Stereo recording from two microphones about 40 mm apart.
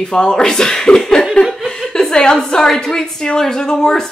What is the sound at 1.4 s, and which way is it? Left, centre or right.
Chuckle, left.